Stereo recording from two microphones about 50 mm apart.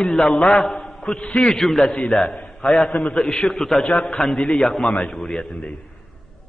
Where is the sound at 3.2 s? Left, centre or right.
Centre.